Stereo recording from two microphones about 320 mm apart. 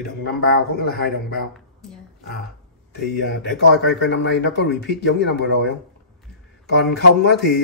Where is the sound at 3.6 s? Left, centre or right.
Left.